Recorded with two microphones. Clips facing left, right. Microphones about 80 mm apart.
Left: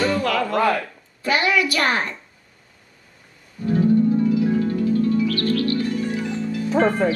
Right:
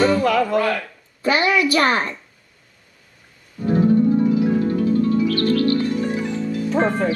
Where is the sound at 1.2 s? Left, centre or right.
Right.